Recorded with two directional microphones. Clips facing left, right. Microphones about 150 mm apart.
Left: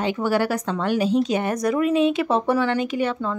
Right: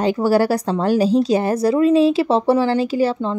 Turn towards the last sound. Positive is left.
turn(degrees=-30)  # may be behind; listen again after turning